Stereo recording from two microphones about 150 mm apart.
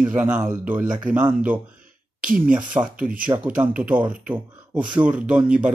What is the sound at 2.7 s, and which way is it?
Speech, 15° right (ahead or behind).